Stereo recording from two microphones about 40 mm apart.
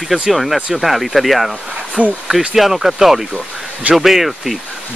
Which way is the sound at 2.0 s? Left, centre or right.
Right.